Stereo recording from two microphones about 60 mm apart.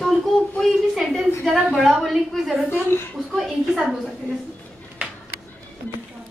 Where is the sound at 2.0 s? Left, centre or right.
Centre.